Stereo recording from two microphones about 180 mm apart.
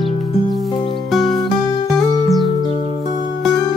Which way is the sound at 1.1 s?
Centre (ahead or behind).